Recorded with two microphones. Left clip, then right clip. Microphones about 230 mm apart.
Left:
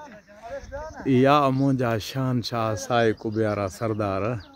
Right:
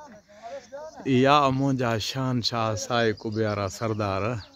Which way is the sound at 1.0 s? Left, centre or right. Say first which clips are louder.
Left 1 dB; centre.